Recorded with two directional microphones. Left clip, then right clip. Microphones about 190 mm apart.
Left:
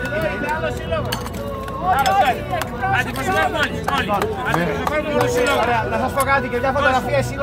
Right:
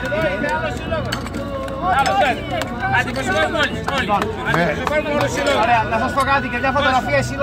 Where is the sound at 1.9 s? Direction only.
Centre (ahead or behind).